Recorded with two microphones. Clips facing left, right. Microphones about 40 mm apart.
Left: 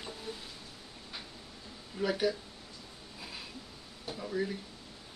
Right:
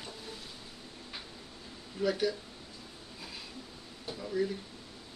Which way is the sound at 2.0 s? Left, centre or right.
Centre.